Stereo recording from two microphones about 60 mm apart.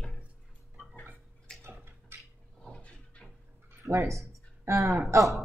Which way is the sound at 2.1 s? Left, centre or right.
Right.